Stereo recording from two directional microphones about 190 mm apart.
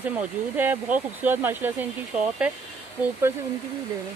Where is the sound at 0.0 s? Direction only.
10° right (ahead or behind).